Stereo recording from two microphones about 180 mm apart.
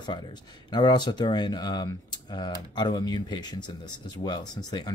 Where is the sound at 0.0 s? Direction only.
25° left (ahead or behind).